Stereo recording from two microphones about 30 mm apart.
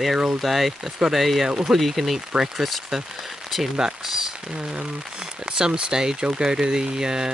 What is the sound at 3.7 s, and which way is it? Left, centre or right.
Speech, centre.